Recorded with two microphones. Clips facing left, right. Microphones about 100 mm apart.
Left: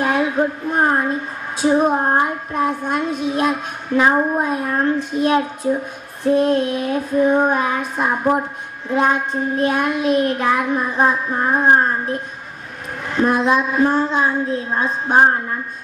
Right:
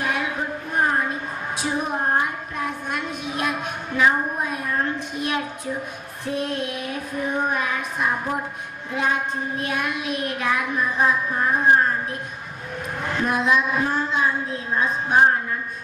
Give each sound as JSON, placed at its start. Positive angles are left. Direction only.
{"t": 0.0, "sound": "a sound", "side_deg": 35}
{"t": 1.6, "sound": "child singing", "side_deg": 30}
{"t": 13.2, "sound": "child singing", "side_deg": 35}